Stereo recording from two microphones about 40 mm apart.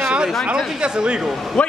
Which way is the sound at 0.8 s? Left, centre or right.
Right.